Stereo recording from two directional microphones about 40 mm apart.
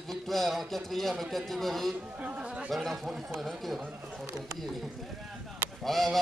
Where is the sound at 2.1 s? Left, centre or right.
Right.